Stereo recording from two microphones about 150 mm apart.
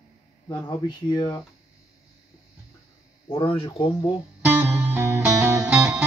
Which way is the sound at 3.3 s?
35° left (ahead or behind).